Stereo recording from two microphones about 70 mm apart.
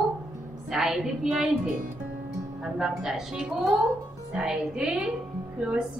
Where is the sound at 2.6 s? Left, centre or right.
Centre.